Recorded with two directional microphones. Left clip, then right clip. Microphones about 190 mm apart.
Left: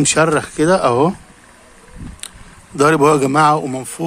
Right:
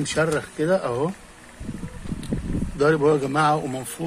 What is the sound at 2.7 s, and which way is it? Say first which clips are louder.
A man's voice: left 7 dB; 50° left (ahead or behind).